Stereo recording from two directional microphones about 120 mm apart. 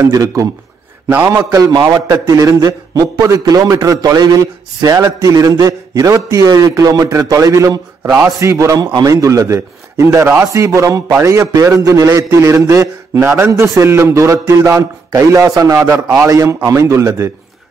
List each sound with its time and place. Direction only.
0.0 s a man's voice: 30° right (ahead or behind)